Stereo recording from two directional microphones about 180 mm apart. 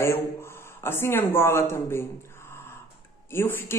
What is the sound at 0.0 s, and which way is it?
A man's voice, 15° left (ahead or behind).